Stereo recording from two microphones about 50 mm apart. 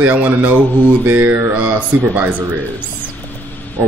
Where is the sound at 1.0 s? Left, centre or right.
Right.